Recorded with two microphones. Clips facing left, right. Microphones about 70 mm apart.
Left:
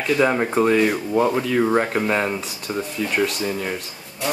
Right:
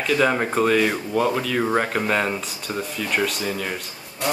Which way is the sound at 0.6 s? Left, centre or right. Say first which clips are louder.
Left 3 dB; centre.